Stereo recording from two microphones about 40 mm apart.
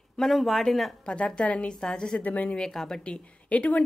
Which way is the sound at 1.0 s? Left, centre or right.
Left.